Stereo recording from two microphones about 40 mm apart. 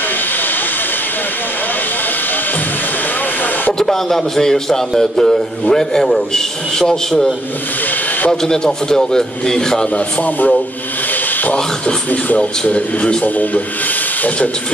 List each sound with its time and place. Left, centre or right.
3.8 s a man's voice: centre
8.3 s a man's voice: centre
9.9 s speech: left
12.1 s speech: left